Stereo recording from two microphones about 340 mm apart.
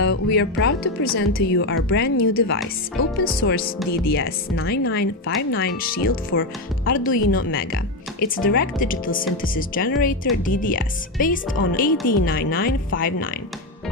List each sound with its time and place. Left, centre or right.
0.0 s speech: left